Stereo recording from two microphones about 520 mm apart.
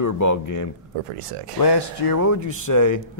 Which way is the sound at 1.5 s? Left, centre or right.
Left.